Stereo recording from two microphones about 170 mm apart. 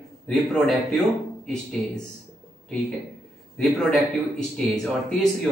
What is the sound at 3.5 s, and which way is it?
A man's voice, 5° left (ahead or behind).